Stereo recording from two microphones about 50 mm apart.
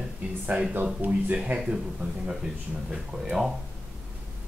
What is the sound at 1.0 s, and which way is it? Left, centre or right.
Speech, right.